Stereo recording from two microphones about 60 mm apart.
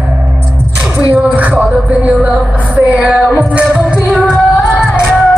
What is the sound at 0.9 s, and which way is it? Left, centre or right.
Music, right.